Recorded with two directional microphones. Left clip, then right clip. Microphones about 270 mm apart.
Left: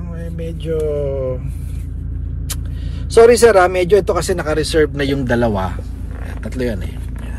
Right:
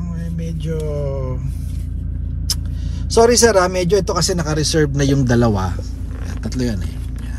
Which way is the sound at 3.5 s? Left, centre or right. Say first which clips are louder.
Left 4 dB; centre.